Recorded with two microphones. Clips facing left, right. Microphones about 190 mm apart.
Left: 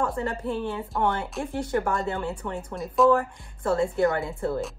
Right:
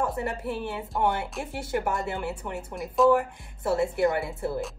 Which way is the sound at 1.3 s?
10° right (ahead or behind).